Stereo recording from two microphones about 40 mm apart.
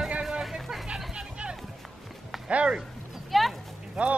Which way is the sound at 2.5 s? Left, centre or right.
Right.